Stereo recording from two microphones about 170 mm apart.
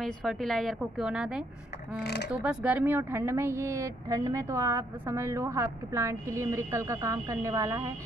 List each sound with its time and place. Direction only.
0.0 s a woman's voice: centre (ahead or behind)
2.0 s speech: 80° left
2.3 s speech: 10° right (ahead or behind)